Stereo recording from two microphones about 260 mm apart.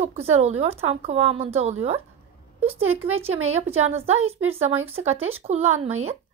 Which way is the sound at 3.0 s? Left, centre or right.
Right.